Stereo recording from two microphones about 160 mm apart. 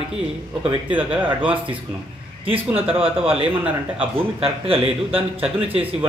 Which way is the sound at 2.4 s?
35° right (ahead or behind).